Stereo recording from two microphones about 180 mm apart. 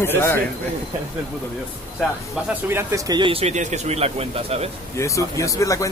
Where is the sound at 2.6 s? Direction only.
15° right (ahead or behind); by 4.7 s 35° right (ahead or behind).